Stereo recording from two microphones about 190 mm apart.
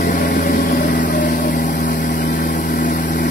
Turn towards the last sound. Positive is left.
turn(degrees=40)  # may be behind; listen again after turning